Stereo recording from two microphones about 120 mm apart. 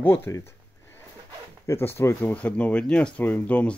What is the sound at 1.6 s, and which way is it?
Speech, 20° left (ahead or behind).